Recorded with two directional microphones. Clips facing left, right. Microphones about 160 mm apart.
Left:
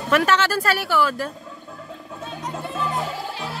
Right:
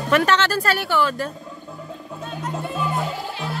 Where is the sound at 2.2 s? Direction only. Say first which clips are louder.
Right 2 dB; centre (ahead or behind).